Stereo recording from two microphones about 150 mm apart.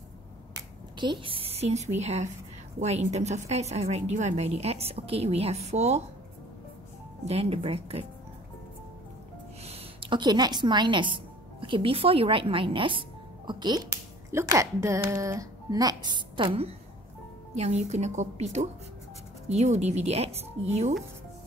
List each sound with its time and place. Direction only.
0.9 s a woman's voice: 30° right (ahead or behind); by 6.0 s 45° right (ahead or behind)
7.2 s a woman's voice: 45° right (ahead or behind)
9.7 s a woman's voice: 35° right (ahead or behind)
17.6 s a woman's voice: 45° right (ahead or behind)